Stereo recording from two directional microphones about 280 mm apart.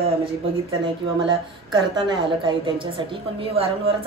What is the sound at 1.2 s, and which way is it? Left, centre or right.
A woman's voice, centre.